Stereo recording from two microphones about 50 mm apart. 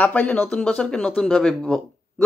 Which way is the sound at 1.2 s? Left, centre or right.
Centre.